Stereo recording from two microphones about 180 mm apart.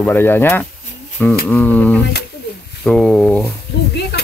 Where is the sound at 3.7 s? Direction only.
65° left (ahead or behind).